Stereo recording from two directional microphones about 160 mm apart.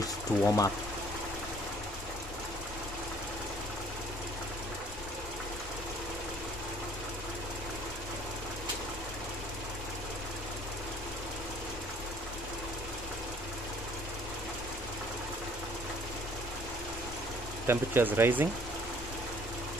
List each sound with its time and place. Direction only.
0.0 s water: 20° left (ahead or behind)
17.6 s speech: 15° right (ahead or behind)